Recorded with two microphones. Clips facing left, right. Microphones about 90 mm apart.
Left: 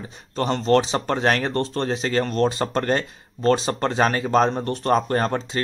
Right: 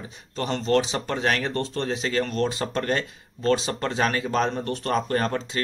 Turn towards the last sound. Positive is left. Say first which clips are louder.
# left 3 dB
turn(degrees=30)  # may be behind; listen again after turning